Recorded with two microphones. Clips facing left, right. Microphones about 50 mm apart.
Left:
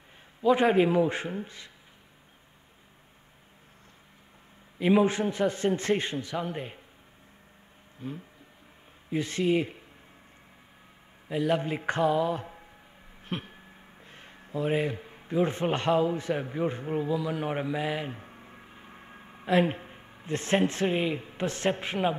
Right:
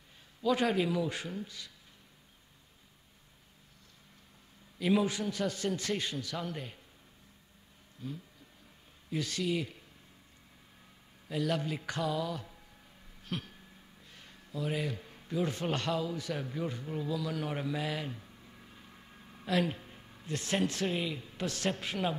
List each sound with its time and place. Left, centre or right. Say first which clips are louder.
0.4 s speech: left 7 dB; left
4.7 s a man's voice: left 6 dB; left
8.0 s speech: left 4 dB; left
11.2 s speech: left 6 dB; left